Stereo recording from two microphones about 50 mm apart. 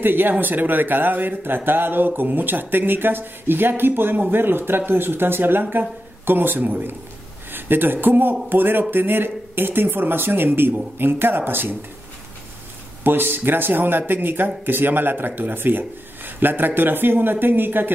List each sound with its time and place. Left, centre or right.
0.0 s a man's voice: right
13.0 s a man's voice: right